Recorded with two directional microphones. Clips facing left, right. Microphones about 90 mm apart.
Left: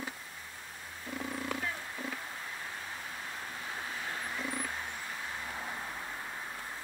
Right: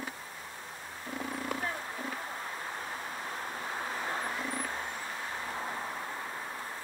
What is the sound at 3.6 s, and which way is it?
Vehicle, 35° right (ahead or behind).